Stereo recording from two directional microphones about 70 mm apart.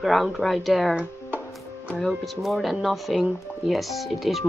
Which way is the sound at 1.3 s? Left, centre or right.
Left.